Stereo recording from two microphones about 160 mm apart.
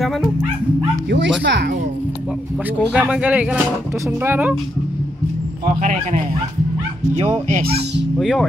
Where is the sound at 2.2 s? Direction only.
5° right (ahead or behind).